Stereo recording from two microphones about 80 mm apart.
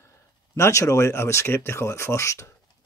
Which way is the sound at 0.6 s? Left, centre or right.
Left.